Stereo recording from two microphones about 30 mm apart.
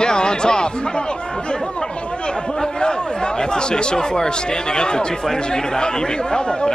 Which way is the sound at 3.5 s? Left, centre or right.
Left.